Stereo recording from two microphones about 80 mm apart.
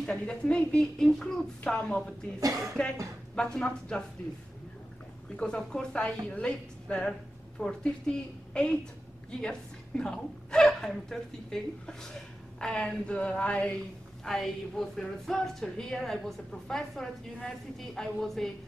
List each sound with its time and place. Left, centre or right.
0.0 s a woman's voice: centre
5.3 s a woman's voice: centre
14.2 s a woman's voice: centre